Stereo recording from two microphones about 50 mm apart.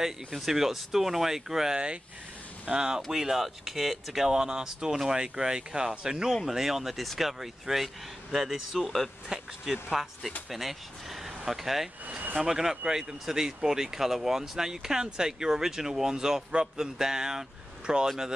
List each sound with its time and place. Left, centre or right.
0.0 s speech: centre
12.1 s speech: right
12.4 s speech: centre